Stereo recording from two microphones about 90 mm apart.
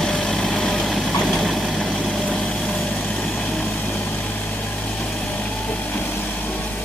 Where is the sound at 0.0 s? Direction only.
5° left (ahead or behind).